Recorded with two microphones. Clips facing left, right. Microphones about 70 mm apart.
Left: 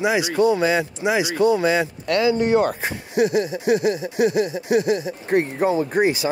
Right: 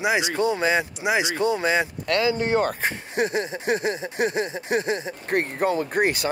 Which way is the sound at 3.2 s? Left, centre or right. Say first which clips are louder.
Left 6 dB; right.